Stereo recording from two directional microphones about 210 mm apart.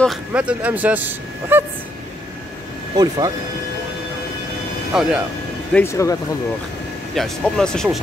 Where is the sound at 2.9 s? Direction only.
20° right (ahead or behind).